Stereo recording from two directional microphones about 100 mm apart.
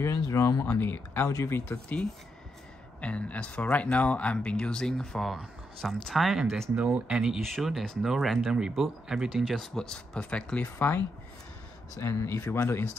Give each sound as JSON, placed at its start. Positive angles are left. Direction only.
{"t": 0.0, "sound": "speech", "side_deg": 30}
{"t": 0.7, "sound": "speech", "side_deg": 20}
{"t": 6.7, "sound": "speech", "side_deg": -10}